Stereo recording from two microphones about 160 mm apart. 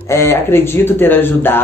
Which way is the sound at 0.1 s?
15° left (ahead or behind).